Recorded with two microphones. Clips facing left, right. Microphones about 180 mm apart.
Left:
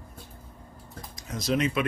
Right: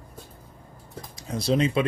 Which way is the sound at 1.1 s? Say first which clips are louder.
Right 3 dB; 30° right (ahead or behind).